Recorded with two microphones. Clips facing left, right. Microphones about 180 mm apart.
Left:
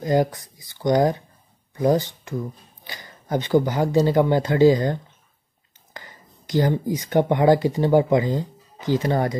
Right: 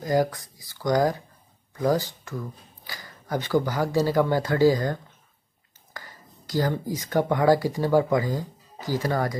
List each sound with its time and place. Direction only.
0.0 s speech: 25° left (ahead or behind)